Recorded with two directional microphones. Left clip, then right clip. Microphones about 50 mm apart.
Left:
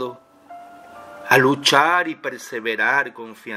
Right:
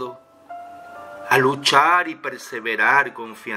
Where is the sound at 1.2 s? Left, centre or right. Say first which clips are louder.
Left 2 dB; left.